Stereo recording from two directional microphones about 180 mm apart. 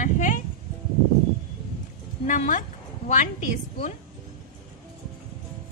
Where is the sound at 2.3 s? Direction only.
45° left (ahead or behind).